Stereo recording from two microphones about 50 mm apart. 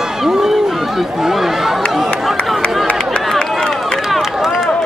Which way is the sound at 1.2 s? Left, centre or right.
Centre.